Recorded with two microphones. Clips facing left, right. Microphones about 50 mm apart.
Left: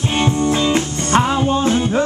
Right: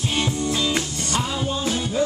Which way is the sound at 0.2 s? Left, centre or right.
Left.